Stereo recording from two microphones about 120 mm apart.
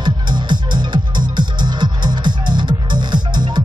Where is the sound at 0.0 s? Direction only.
40° right (ahead or behind).